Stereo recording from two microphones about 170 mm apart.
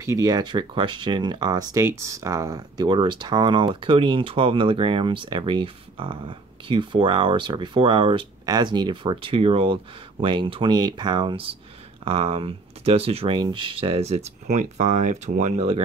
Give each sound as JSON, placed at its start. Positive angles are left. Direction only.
{"t": 0.0, "sound": "speech", "side_deg": -20}